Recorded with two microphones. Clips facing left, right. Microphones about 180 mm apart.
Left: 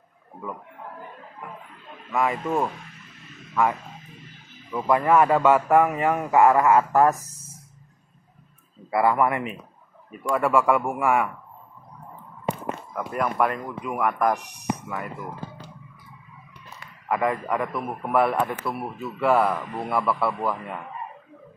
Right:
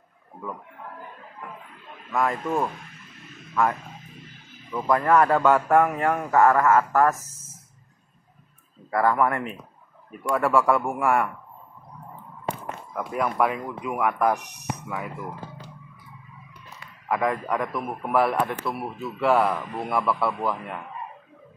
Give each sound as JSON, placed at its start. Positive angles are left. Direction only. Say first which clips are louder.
{"t": 2.1, "sound": "a man's voice", "louder": "left 1 dB", "side_deg": 5}
{"t": 4.7, "sound": "a man's voice", "louder": "left 1 dB", "side_deg": 5}
{"t": 7.2, "sound": "speech", "louder": "left 2 dB", "side_deg": 35}
{"t": 8.9, "sound": "a man's voice", "louder": "left 1 dB", "side_deg": 10}
{"t": 12.9, "sound": "speech", "louder": "right 1 dB", "side_deg": 0}
{"t": 17.1, "sound": "speech", "louder": "even", "side_deg": 0}